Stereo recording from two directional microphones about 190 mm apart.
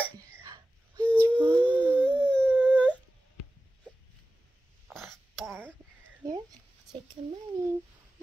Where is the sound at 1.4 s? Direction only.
25° right (ahead or behind).